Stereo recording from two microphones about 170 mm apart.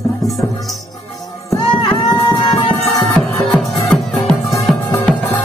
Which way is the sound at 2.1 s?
20° left (ahead or behind).